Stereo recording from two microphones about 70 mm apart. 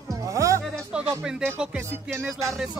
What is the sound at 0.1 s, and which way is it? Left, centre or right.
Music, right.